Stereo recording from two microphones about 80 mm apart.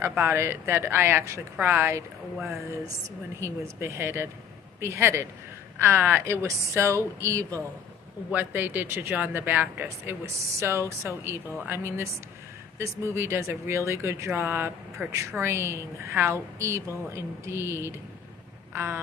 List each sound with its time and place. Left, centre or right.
0.0 s a woman's voice: right
3.3 s a woman's voice: right
8.3 s speech: right
9.8 s a woman's voice: right
18.7 s vehicle: right